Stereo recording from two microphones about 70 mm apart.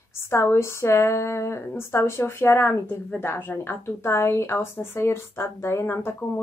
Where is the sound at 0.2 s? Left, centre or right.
Left.